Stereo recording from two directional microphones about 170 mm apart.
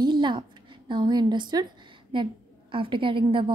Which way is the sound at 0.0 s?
25° right (ahead or behind).